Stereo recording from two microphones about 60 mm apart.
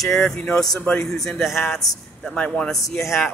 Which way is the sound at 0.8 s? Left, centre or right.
Centre.